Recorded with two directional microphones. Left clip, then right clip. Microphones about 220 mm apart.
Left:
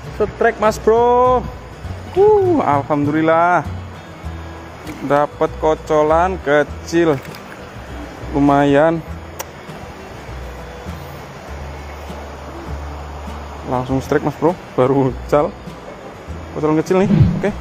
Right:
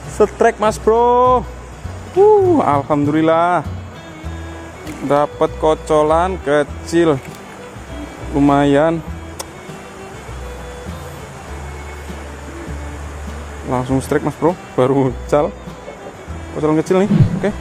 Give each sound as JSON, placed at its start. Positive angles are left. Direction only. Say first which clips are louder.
{"t": 0.2, "sound": "a man's voice", "louder": "right 3 dB", "side_deg": -35}
{"t": 0.6, "sound": "speech", "louder": "even", "side_deg": -15}
{"t": 2.5, "sound": "speech", "louder": "right 1 dB", "side_deg": -15}
{"t": 5.1, "sound": "speech", "louder": "right 1 dB", "side_deg": -15}
{"t": 8.4, "sound": "speech", "louder": "even", "side_deg": -15}
{"t": 13.7, "sound": "speech", "louder": "right 1 dB", "side_deg": -15}
{"t": 16.6, "sound": "speech", "louder": "right 1 dB", "side_deg": -10}